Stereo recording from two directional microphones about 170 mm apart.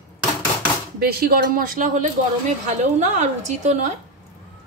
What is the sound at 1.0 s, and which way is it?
A woman's voice, 65° right (ahead or behind).